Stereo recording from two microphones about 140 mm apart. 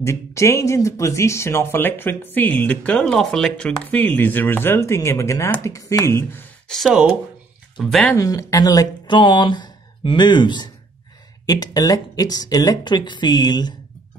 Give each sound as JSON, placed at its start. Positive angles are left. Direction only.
{"t": 0.0, "sound": "speech", "side_deg": 20}
{"t": 6.7, "sound": "speech", "side_deg": 0}
{"t": 8.1, "sound": "speech", "side_deg": 20}